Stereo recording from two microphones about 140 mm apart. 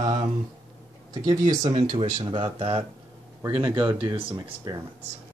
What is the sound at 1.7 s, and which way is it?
Speech, 55° right (ahead or behind).